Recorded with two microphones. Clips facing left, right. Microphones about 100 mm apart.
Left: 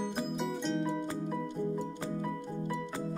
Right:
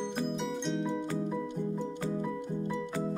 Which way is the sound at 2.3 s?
15° right (ahead or behind).